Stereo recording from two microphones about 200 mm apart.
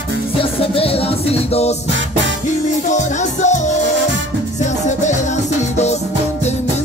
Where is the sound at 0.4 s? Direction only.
30° left (ahead or behind).